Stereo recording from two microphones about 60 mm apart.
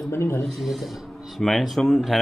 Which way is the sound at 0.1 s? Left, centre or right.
Left.